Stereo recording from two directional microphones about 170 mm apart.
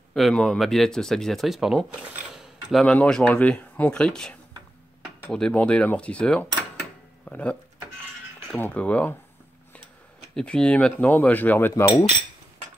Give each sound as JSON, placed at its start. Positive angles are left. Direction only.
{"t": 0.1, "sound": "speech", "side_deg": 0}
{"t": 10.3, "sound": "speech", "side_deg": 5}